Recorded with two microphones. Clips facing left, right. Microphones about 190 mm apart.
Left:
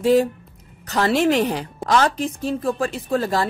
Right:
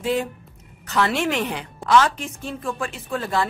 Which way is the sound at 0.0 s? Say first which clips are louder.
Left 7 dB; 40° left (ahead or behind).